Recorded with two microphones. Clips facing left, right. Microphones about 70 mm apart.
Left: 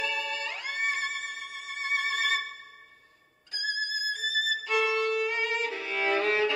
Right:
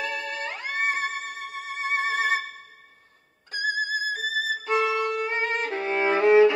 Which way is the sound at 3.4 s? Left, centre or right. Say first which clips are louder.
Right 6 dB; right.